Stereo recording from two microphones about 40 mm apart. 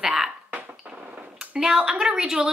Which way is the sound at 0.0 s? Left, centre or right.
Centre.